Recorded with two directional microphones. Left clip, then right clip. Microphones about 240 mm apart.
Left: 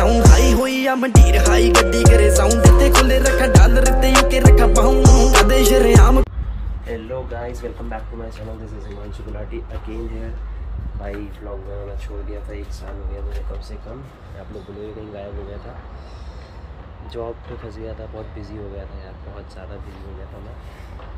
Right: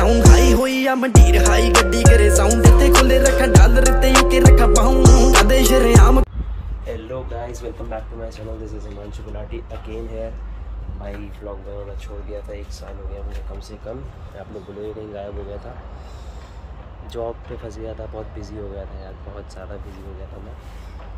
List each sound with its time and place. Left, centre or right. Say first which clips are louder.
0.0 s music: right 1 dB; centre
17.1 s speech: right 2 dB; centre